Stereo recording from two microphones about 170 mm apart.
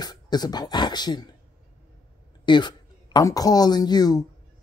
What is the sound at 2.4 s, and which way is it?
A woman's voice, 25° left (ahead or behind).